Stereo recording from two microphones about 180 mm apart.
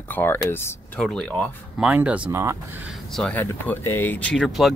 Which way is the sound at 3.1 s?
5° left (ahead or behind).